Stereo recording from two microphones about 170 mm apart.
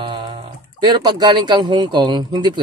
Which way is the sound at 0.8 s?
25° right (ahead or behind).